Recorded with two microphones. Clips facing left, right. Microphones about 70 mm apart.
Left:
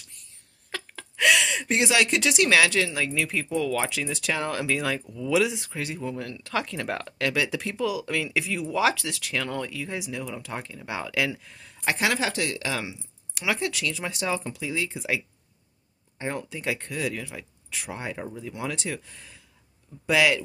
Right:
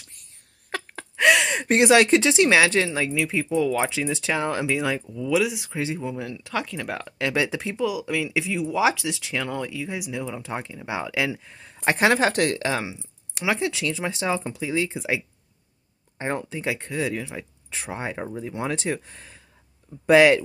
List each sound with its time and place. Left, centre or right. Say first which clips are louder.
0.7 s a sound: right 5 dB; right
2.1 s speech: right 4 dB; right
3.1 s speech: right 3 dB; centre
5.1 s speech: even; centre
5.8 s speech: right 5 dB; centre
6.5 s speech: even; centre; by 7.8 s right
7.8 s speech: right 2 dB; centre
10.2 s speech: right 3 dB; right